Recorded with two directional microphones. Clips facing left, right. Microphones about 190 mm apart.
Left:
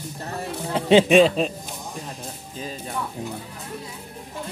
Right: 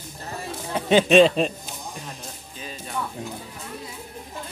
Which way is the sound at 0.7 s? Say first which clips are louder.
Left 3 dB; 25° left (ahead or behind).